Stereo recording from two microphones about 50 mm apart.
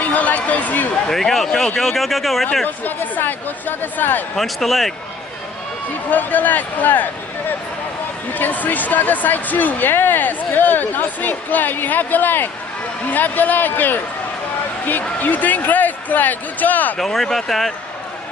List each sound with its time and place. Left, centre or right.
0.0 s speech: left
1.0 s speech: centre
2.6 s speech: left
4.4 s speech: centre
6.0 s speech: left
17.0 s speech: centre